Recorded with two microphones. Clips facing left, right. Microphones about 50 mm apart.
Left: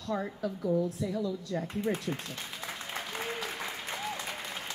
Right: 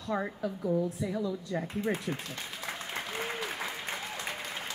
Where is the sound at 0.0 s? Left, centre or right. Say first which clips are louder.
Right 1 dB; centre.